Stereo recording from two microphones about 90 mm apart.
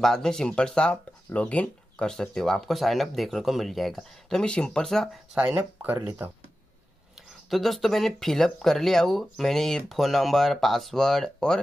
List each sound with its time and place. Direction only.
0.0 s speech: 5° left (ahead or behind)
5.3 s speech: 15° right (ahead or behind)
7.4 s speech: centre (ahead or behind)